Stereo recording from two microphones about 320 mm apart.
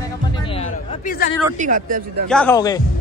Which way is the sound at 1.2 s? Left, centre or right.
Left.